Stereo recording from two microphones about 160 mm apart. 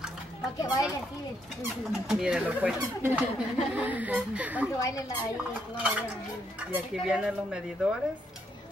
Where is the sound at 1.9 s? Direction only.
5° right (ahead or behind).